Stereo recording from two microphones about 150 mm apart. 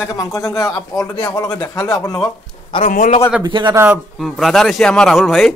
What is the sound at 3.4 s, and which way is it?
Speech, 30° right (ahead or behind).